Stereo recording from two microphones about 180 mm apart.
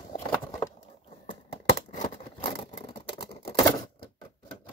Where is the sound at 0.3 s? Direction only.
15° left (ahead or behind).